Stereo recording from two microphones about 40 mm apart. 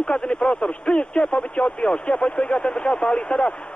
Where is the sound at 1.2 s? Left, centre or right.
Left.